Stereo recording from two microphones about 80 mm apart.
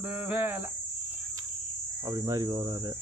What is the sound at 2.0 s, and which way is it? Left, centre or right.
Speech, right.